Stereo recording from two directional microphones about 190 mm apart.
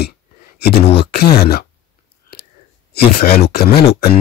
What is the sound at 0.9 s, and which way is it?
Speech, 55° left (ahead or behind).